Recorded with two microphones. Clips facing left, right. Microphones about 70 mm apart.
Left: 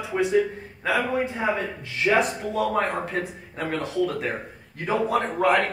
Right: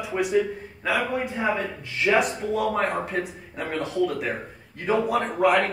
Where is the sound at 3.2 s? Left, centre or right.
Right.